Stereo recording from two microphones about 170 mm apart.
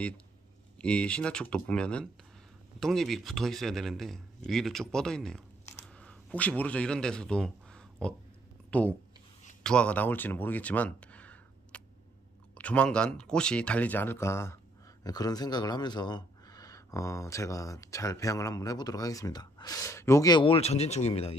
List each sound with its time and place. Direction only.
0.7 s a man's voice: 5° left (ahead or behind)
8.6 s a sound: 10° left (ahead or behind)
9.6 s speech: 5° left (ahead or behind); by 21.4 s 35° left (ahead or behind)